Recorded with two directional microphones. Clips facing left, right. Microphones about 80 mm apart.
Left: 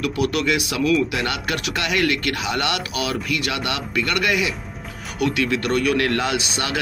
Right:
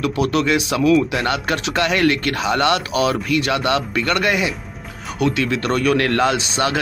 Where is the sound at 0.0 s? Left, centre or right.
Right.